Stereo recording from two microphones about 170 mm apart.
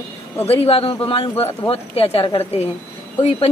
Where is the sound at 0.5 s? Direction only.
35° left (ahead or behind).